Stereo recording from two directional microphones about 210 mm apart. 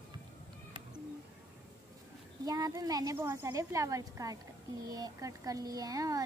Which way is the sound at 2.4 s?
20° right (ahead or behind).